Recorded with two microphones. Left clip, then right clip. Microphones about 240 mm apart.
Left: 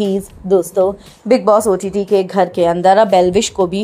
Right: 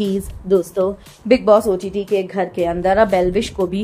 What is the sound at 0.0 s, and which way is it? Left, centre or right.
A woman's voice, centre.